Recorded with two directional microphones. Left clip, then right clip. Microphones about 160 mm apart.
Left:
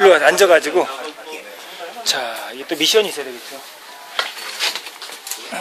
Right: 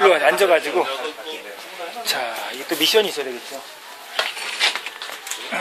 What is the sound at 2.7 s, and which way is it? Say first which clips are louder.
Speech: left 2 dB; 35° left (ahead or behind).